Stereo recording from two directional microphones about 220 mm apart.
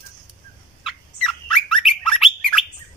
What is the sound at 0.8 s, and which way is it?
Bird, centre (ahead or behind).